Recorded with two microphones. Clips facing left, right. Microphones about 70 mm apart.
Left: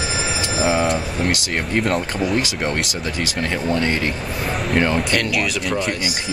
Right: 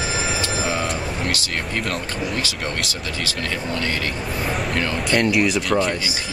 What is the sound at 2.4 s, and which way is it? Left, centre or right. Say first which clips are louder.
Speech: left 4 dB; left.